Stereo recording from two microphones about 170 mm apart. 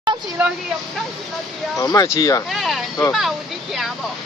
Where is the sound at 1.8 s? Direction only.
20° left (ahead or behind).